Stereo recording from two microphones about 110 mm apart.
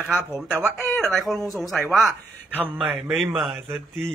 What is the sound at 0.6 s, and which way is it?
Speech, 20° left (ahead or behind).